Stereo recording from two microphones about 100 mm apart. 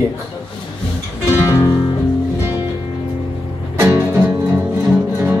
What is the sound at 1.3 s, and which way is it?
Music, 30° left (ahead or behind).